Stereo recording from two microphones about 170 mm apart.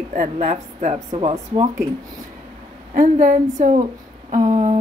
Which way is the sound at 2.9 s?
50° right (ahead or behind).